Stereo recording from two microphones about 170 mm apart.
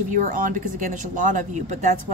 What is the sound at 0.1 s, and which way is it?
A woman's voice, 50° right (ahead or behind).